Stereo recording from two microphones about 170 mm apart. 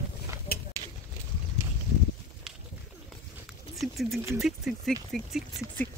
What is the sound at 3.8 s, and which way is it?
Speech, centre (ahead or behind).